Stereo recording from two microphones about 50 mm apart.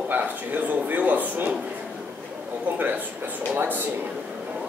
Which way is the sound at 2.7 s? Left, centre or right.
Right.